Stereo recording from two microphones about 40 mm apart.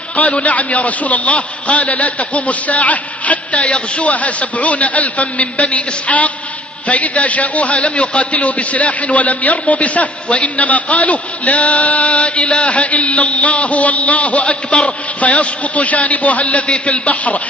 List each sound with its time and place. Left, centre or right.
0.1 s a man's voice: left